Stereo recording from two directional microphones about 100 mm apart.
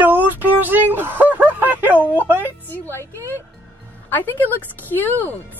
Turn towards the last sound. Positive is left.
turn(degrees=20)  # may be behind; listen again after turning